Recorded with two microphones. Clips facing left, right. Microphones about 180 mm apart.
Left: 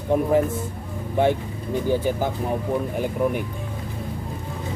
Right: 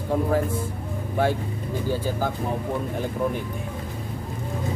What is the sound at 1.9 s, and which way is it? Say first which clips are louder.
Speech: left 4 dB; 20° left (ahead or behind).